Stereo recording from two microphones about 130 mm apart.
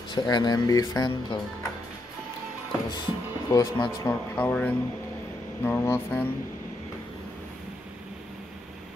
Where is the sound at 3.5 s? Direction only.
25° left (ahead or behind).